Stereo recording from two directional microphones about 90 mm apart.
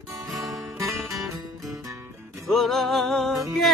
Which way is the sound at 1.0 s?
35° right (ahead or behind).